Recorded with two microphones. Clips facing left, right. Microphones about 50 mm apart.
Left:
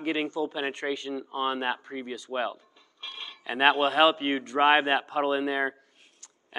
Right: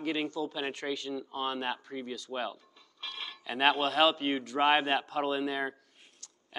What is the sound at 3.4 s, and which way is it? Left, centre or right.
A man's voice, centre.